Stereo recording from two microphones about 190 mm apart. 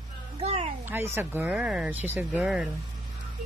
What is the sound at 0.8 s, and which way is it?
Speech, 10° right (ahead or behind).